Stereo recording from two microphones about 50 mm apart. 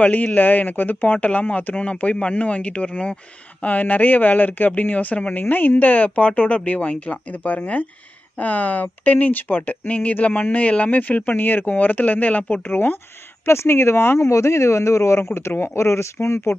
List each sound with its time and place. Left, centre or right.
0.0 s speech: left
12.6 s speech: left
13.5 s speech: left
14.2 s speech: left
15.3 s speech: left